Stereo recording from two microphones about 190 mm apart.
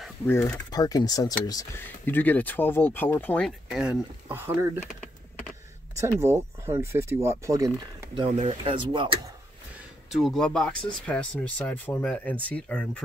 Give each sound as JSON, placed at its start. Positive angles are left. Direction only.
{"t": 0.3, "sound": "speech", "side_deg": 15}
{"t": 5.9, "sound": "speech", "side_deg": -15}
{"t": 8.1, "sound": "speech", "side_deg": -30}
{"t": 10.1, "sound": "speech", "side_deg": 0}